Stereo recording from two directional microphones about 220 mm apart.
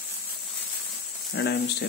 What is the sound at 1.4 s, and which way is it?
Speech, 50° left (ahead or behind).